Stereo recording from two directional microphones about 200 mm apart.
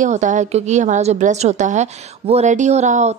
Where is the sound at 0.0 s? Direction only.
40° right (ahead or behind).